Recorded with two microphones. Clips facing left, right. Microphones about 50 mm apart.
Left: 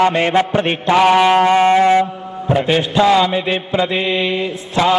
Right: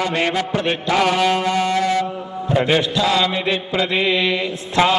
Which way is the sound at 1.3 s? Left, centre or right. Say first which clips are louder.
Left 8 dB; left.